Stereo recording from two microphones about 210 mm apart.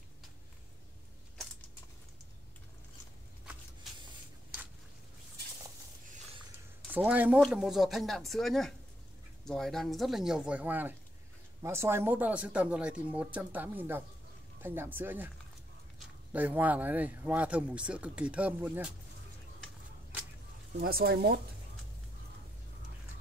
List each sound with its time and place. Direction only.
3.9 s spray: centre (ahead or behind)
6.9 s speech: 5° right (ahead or behind)
16.3 s speech: 10° right (ahead or behind)
19.6 s a sound: 5° right (ahead or behind)
20.8 s speech: 45° right (ahead or behind)